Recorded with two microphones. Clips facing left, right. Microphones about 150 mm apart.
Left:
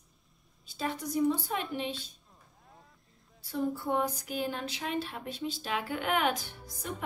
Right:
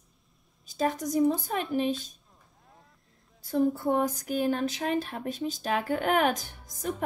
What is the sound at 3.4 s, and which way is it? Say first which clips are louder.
Speech: right 7 dB; 45° right (ahead or behind).